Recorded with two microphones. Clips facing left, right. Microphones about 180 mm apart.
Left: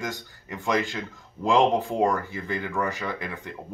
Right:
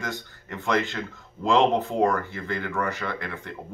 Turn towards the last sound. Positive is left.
turn(degrees=15)  # may be behind; listen again after turning